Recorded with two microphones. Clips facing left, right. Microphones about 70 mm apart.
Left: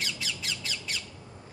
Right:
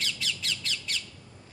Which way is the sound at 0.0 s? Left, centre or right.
Centre.